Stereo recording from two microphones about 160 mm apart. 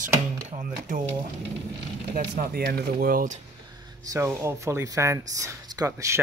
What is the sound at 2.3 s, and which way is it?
Speech, 65° right (ahead or behind).